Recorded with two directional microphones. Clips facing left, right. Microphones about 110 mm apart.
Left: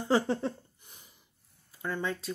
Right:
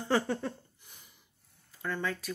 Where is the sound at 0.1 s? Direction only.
25° left (ahead or behind).